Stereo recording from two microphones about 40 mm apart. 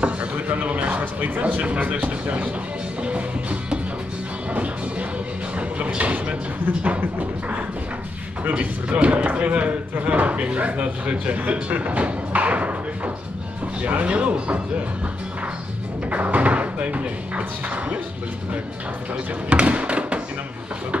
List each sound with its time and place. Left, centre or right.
0.0 s speech: right
3.0 s music: right
5.6 s music: right
7.0 s speech: right
16.1 s speech: right
19.5 s a sound: right